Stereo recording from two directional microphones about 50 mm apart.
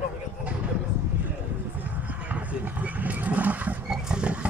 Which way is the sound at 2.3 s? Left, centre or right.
Right.